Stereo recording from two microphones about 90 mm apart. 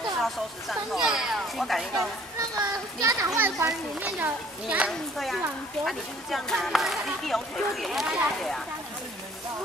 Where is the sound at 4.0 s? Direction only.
15° right (ahead or behind).